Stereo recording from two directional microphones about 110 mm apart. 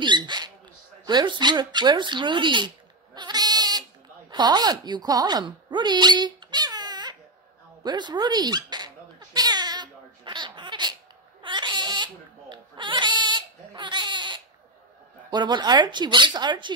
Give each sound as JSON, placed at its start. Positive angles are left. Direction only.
{"t": 0.0, "sound": "rodents", "side_deg": -45}
{"t": 1.0, "sound": "speech", "side_deg": -45}
{"t": 3.2, "sound": "bleat", "side_deg": -40}
{"t": 4.3, "sound": "speech", "side_deg": -40}
{"t": 7.8, "sound": "dog", "side_deg": -40}
{"t": 11.4, "sound": "goat", "side_deg": -45}
{"t": 15.3, "sound": "speech", "side_deg": -40}